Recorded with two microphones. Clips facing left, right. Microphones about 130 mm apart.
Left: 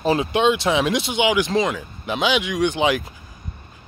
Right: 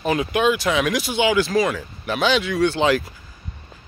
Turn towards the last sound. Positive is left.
turn(degrees=15)  # may be behind; listen again after turning